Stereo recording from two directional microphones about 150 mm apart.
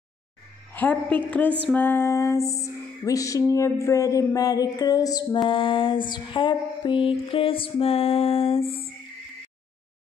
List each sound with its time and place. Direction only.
0.7 s a woman's voice: 10° left (ahead or behind)
1.7 s music: 15° left (ahead or behind)
5.5 s music: 35° left (ahead or behind)